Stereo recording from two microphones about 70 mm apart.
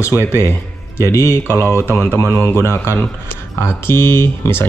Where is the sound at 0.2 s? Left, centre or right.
Left.